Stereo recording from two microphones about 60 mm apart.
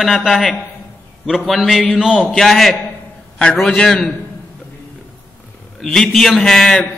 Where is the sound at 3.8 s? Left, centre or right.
Centre.